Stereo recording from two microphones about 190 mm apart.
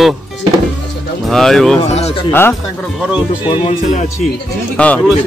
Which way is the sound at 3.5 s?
25° left (ahead or behind).